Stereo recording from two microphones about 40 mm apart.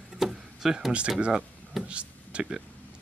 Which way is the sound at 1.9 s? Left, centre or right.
Right.